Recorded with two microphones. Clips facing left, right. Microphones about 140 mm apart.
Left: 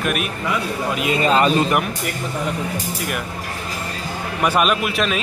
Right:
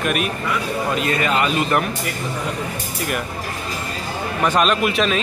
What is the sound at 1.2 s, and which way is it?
Speech, 35° left (ahead or behind).